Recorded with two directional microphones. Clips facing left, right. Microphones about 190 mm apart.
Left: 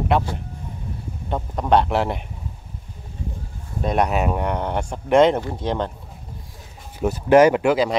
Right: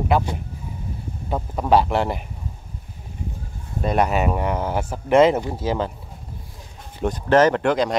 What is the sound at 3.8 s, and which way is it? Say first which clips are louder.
Speech: even; centre (ahead or behind).